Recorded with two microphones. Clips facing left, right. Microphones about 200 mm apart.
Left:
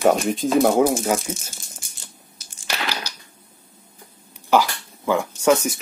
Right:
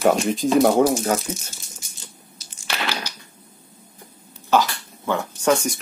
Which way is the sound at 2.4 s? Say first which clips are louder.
Right 2 dB; 55° left (ahead or behind).